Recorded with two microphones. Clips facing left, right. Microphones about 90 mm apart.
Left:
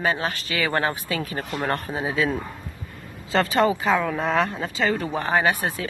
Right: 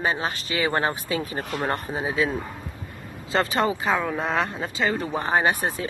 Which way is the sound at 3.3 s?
25° right (ahead or behind).